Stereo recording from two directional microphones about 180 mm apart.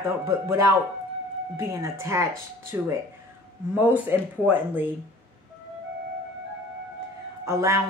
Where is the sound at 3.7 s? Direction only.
10° right (ahead or behind).